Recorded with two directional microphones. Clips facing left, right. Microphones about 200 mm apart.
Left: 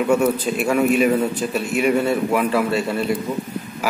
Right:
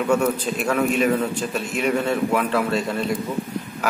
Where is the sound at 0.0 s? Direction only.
5° left (ahead or behind).